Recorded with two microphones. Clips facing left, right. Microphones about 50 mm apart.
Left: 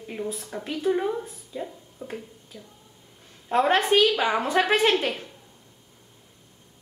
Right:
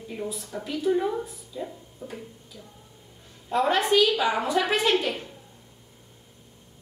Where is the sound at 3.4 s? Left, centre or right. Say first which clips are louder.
Left 2 dB; left.